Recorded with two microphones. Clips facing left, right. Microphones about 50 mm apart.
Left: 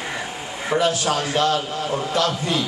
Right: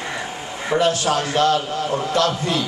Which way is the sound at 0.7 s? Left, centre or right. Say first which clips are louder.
Right 2 dB; centre.